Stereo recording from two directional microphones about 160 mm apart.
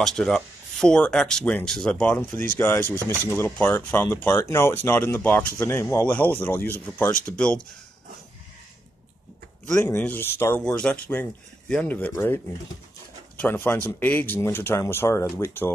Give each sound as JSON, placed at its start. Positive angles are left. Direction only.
{"t": 0.0, "sound": "speech", "side_deg": 5}
{"t": 9.8, "sound": "speech", "side_deg": 15}
{"t": 13.4, "sound": "speech", "side_deg": 15}